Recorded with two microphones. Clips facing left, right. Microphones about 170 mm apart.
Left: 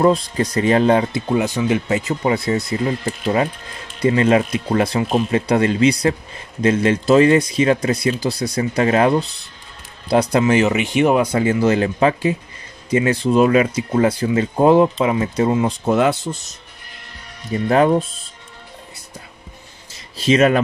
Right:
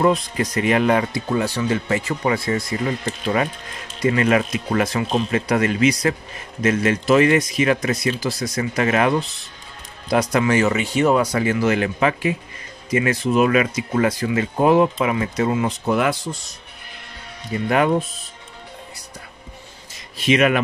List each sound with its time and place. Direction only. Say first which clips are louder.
0.0 s speech: left 3 dB; 30° left (ahead or behind)
4.0 s speech: left 3 dB; 30° left (ahead or behind)
17.5 s speech: left 4 dB; 30° left (ahead or behind)
20.2 s speech: left 3 dB; 30° left (ahead or behind)